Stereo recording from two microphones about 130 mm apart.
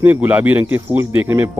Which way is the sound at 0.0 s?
15° right (ahead or behind).